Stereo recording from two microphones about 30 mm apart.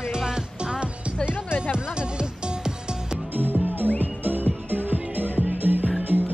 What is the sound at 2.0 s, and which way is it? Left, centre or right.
Music, right.